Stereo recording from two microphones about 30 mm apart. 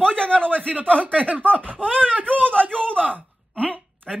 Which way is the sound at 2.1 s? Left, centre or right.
Right.